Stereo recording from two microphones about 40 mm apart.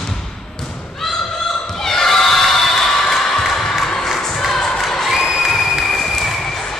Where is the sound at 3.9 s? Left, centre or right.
Centre.